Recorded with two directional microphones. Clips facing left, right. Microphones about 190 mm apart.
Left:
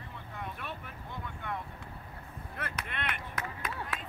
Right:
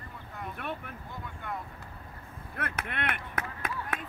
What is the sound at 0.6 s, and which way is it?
Vehicle, 55° right (ahead or behind).